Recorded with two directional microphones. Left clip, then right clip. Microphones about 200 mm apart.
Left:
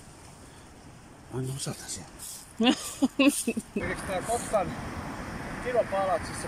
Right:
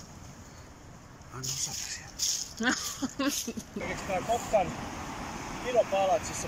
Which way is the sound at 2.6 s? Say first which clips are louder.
Left 6 dB; 20° left (ahead or behind).